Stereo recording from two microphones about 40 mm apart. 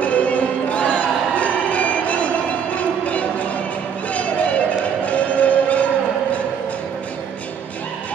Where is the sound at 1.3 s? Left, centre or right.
Left.